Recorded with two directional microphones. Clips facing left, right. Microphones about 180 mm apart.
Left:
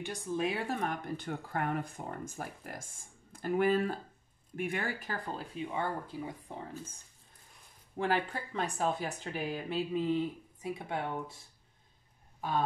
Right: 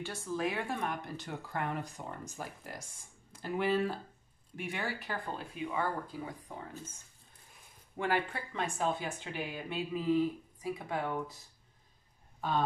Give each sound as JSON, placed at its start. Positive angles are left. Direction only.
{"t": 0.0, "sound": "speech", "side_deg": 20}
{"t": 0.7, "sound": "speech", "side_deg": 40}
{"t": 8.0, "sound": "speech", "side_deg": 35}
{"t": 9.9, "sound": "speech", "side_deg": 25}
{"t": 12.4, "sound": "speech", "side_deg": 10}